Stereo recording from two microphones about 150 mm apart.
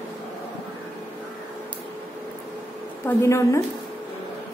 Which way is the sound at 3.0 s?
20° left (ahead or behind).